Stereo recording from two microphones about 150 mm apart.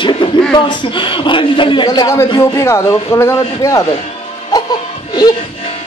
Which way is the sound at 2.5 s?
20° left (ahead or behind).